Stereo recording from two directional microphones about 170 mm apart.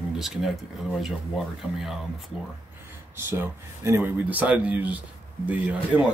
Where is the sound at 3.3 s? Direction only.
15° right (ahead or behind).